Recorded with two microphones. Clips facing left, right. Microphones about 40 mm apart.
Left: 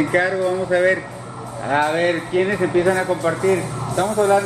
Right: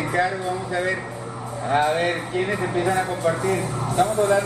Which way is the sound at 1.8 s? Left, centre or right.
Left.